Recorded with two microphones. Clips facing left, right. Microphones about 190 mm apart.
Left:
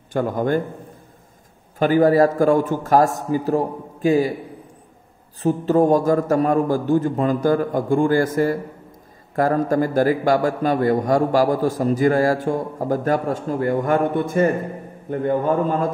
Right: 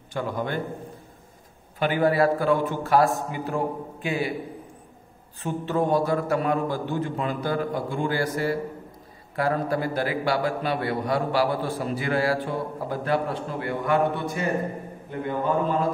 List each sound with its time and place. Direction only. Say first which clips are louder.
0.1 s a man's voice: left 8 dB; 45° left (ahead or behind)
1.8 s a man's voice: left 7 dB; 40° left (ahead or behind)
5.4 s a man's voice: left 8 dB; 40° left (ahead or behind)